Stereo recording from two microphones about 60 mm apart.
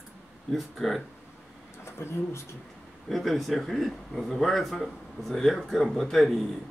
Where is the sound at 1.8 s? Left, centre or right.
Left.